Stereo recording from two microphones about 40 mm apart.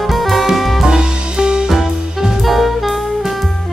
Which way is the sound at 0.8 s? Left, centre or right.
Centre.